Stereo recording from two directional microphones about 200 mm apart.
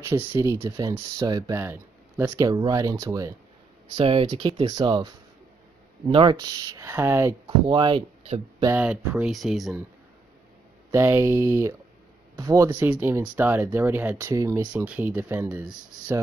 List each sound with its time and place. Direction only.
0.0 s speech: 10° right (ahead or behind)
3.9 s speech: 30° right (ahead or behind)
8.6 s speech: 5° right (ahead or behind)
10.9 s speech: 15° right (ahead or behind)